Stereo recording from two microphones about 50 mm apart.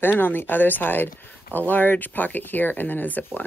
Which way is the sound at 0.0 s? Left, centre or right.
Left.